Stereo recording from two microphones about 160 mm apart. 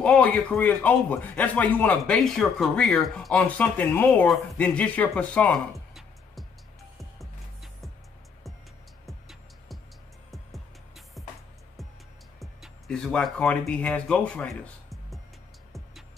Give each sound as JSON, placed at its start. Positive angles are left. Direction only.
{"t": 0.0, "sound": "speech", "side_deg": 5}
{"t": 4.3, "sound": "music", "side_deg": 10}
{"t": 9.0, "sound": "music", "side_deg": 0}
{"t": 12.4, "sound": "speech", "side_deg": 0}